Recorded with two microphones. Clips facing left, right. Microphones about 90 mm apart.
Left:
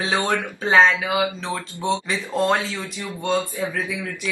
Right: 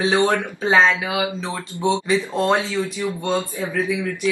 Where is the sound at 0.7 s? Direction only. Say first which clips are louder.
Even; centre (ahead or behind).